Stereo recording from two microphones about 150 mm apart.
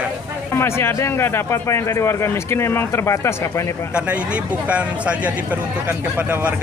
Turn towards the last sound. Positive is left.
turn(degrees=-10)  # may be behind; listen again after turning